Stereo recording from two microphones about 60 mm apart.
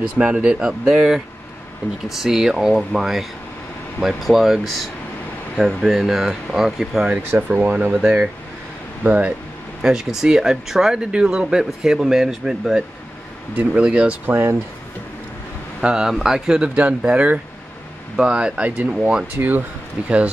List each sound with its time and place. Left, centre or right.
0.0 s speech: centre
7.2 s speech: right
9.0 s speech: right
9.8 s speech: centre
13.8 s speech: centre
14.2 s speech: right
15.8 s speech: centre
19.3 s speech: right
20.0 s speech: right